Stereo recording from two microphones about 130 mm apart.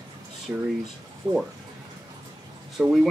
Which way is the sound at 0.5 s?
25° right (ahead or behind).